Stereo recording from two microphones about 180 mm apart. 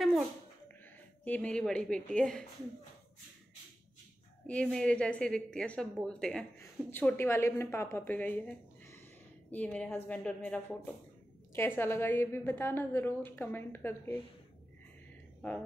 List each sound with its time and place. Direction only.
1.2 s a woman's voice: 10° left (ahead or behind)
4.5 s a woman's voice: 5° left (ahead or behind)